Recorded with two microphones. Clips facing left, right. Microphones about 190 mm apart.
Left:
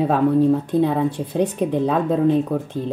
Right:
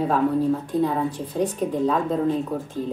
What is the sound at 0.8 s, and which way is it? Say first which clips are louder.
Speech: left 4 dB; 65° left (ahead or behind).